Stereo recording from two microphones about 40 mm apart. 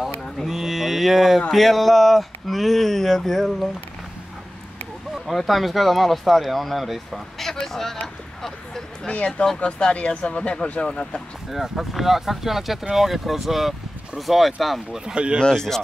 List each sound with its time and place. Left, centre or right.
0.5 s speech: centre
5.2 s speech: centre
7.6 s speech: centre
8.4 s vehicle: centre
9.0 s speech: left
11.5 s speech: centre
15.1 s speech: right
15.5 s speech: centre